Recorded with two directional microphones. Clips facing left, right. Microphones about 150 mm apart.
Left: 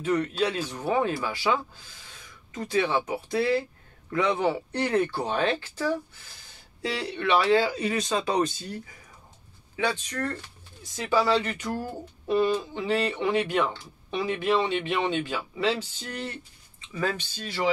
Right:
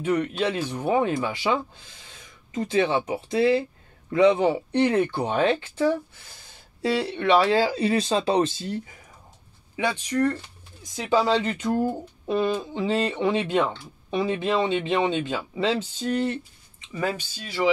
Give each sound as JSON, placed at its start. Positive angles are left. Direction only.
{"t": 0.0, "sound": "speech", "side_deg": -15}
{"t": 16.9, "sound": "speech", "side_deg": -15}